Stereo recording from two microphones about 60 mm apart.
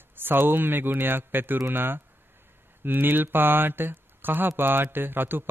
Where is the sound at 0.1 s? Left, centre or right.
Right.